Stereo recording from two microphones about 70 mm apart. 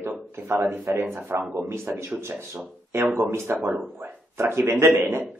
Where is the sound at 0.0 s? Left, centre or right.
Right.